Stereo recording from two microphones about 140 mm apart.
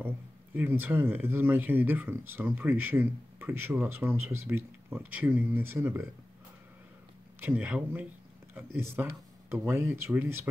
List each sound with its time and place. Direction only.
0.6 s speech: 15° right (ahead or behind)
7.4 s speech: 10° right (ahead or behind)